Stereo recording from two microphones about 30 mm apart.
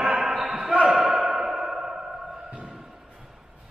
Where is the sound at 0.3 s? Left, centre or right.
Centre.